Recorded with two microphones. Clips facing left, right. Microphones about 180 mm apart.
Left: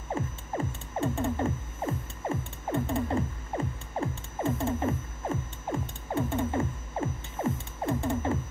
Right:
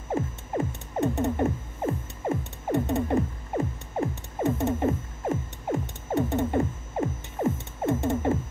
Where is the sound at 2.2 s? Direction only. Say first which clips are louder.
Right 4 dB; 20° right (ahead or behind).